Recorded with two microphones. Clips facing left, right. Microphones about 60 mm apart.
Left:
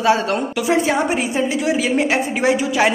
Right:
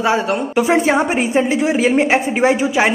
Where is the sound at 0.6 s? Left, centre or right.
Right.